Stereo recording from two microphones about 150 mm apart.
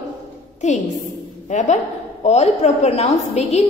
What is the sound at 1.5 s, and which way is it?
A woman's voice, 50° left (ahead or behind).